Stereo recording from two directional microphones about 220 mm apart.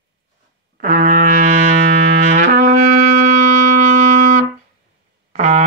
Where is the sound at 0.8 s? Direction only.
35° right (ahead or behind).